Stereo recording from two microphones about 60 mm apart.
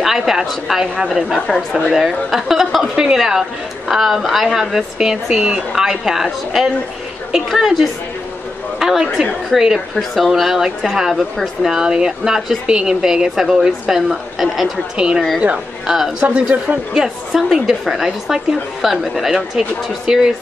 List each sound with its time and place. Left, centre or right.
0.0 s speech: centre
15.0 s speech: centre
16.9 s speech: centre